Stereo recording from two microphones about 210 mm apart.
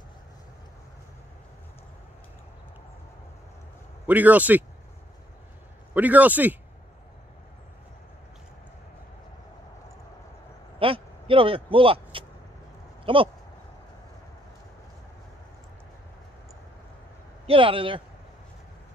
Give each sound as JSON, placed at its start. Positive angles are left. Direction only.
{"t": 4.1, "sound": "speech", "side_deg": -5}
{"t": 5.9, "sound": "speech", "side_deg": -5}
{"t": 10.8, "sound": "vehicle", "side_deg": -25}
{"t": 13.0, "sound": "a sound", "side_deg": -25}
{"t": 17.5, "sound": "speech", "side_deg": -25}